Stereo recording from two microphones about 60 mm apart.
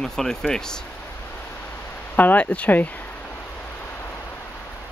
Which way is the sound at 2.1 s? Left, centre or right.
Left.